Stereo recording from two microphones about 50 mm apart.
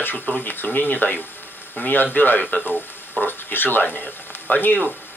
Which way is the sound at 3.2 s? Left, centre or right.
Left.